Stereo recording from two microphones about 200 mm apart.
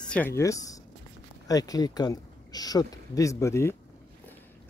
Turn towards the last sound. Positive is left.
turn(degrees=15)  # may be behind; listen again after turning